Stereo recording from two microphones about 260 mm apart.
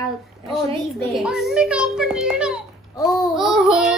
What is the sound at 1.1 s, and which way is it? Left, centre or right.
Child singing, centre.